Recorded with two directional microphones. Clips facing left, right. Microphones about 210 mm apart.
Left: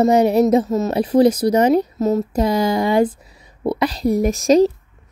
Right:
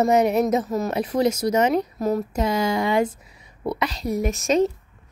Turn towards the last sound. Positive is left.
turn(degrees=35)  # may be behind; listen again after turning